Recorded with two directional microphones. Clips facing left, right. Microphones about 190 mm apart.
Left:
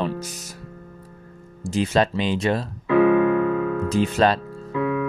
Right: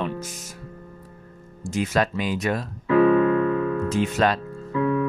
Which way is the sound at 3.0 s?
10° left (ahead or behind).